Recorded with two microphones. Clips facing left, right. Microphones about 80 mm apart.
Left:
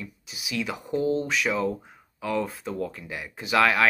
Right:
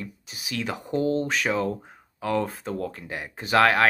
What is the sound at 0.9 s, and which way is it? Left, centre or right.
Speech, right.